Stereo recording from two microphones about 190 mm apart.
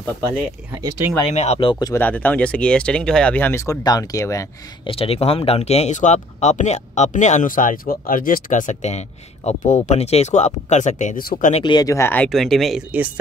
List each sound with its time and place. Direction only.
1.2 s speech: 35° left (ahead or behind)
2.0 s speech: 10° left (ahead or behind)
4.9 s speech: 30° left (ahead or behind)
11.6 s speech: 20° left (ahead or behind); by 13.1 s 5° right (ahead or behind)